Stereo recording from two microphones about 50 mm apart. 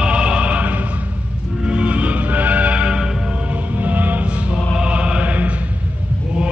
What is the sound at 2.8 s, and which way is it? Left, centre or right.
Music, centre.